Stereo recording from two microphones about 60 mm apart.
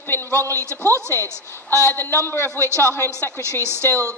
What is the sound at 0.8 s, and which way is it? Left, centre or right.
Speech, right.